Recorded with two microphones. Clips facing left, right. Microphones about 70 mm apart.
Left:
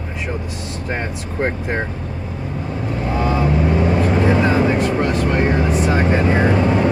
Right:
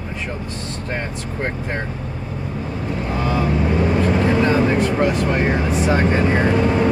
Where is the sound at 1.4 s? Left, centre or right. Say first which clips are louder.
Left 4 dB; centre.